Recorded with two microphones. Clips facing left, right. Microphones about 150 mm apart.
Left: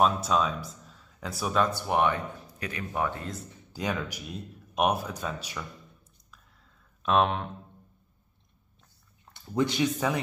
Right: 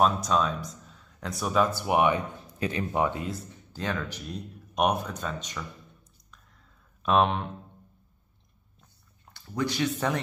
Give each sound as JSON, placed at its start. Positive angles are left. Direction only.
{"t": 0.0, "sound": "speech", "side_deg": 0}
{"t": 1.8, "sound": "speech", "side_deg": -10}
{"t": 3.7, "sound": "speech", "side_deg": 10}
{"t": 7.0, "sound": "speech", "side_deg": 0}
{"t": 9.3, "sound": "speech", "side_deg": 20}
{"t": 9.9, "sound": "a man's voice", "side_deg": 10}